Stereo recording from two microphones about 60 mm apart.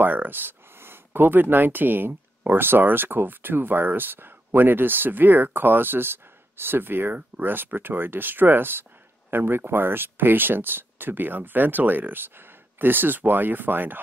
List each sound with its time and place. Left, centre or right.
0.0 s speech: right